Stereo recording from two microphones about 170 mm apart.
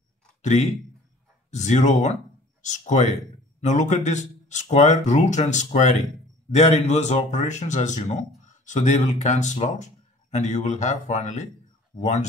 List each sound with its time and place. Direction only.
0.4 s speech: 45° left (ahead or behind)